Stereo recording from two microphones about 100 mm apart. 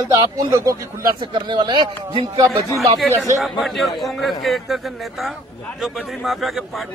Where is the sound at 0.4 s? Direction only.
35° right (ahead or behind).